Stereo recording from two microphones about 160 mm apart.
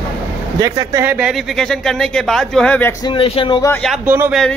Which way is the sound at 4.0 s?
10° right (ahead or behind).